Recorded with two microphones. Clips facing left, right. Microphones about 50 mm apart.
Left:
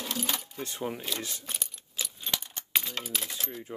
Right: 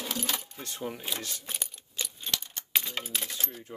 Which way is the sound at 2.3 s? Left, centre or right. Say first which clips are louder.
Even; centre.